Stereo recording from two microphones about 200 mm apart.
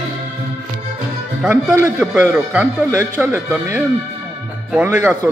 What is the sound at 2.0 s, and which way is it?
Speech, 5° right (ahead or behind).